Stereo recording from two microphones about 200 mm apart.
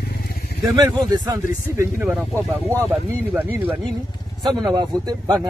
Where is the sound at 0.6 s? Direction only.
20° right (ahead or behind).